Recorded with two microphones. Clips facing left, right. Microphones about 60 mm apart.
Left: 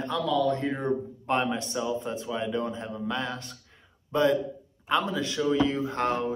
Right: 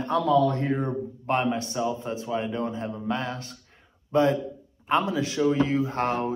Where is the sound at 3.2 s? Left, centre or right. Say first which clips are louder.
Right 1 dB; centre.